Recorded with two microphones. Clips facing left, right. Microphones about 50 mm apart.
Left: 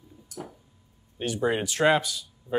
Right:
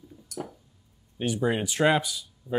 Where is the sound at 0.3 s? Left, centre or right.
Right.